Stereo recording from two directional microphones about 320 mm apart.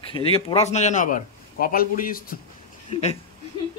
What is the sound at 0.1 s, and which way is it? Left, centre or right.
A man's voice, centre.